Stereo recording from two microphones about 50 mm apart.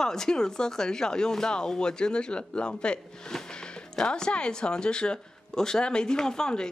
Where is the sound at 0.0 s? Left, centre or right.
Centre.